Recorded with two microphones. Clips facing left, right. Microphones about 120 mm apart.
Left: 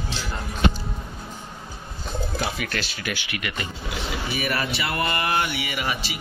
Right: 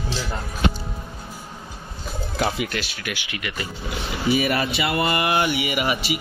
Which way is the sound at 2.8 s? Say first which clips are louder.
Left 1 dB; 5° right (ahead or behind).